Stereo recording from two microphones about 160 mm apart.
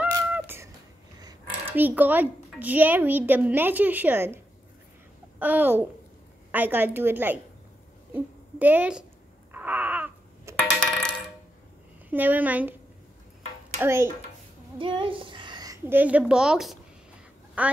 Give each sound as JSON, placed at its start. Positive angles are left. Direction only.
{"t": 0.3, "sound": "a sound", "side_deg": -15}
{"t": 1.5, "sound": "a child's voice", "side_deg": -10}
{"t": 5.4, "sound": "a child's voice", "side_deg": -10}
{"t": 9.5, "sound": "wail", "side_deg": -10}
{"t": 10.8, "sound": "coin", "side_deg": 5}
{"t": 12.1, "sound": "a child's voice", "side_deg": -10}
{"t": 13.7, "sound": "a child's voice", "side_deg": -15}
{"t": 14.8, "sound": "a woman's voice", "side_deg": -35}